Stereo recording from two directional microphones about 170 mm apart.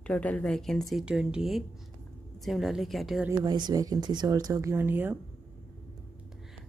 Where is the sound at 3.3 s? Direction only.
25° right (ahead or behind).